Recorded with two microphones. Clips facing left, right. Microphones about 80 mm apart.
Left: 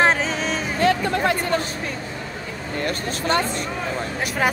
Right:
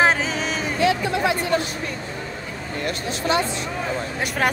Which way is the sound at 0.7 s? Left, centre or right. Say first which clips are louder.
Left 1 dB; left.